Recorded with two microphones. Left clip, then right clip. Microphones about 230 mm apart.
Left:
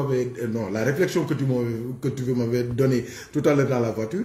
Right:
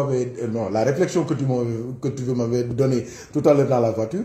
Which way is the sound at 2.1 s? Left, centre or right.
Centre.